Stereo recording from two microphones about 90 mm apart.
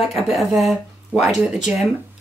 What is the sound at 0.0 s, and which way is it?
Speech, centre (ahead or behind).